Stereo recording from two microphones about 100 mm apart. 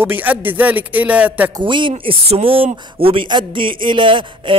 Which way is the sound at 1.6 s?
55° right (ahead or behind).